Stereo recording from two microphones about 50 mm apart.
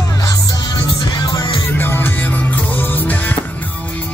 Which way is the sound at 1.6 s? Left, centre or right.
Left.